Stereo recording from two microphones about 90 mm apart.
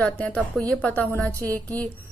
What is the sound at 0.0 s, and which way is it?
A woman's voice, 15° left (ahead or behind).